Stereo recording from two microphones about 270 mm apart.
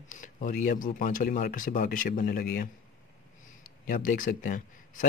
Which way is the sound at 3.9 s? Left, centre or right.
Left.